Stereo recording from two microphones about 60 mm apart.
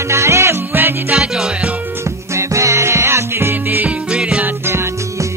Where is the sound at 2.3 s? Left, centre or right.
Right.